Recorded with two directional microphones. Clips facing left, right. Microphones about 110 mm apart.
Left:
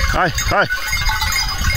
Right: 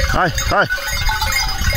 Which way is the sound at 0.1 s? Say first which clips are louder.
Even; 15° right (ahead or behind).